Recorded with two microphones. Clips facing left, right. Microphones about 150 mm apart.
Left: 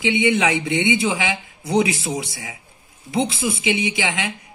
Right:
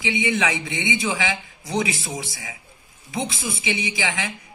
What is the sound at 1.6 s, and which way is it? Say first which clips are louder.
Speech: left 7 dB; 65° left (ahead or behind).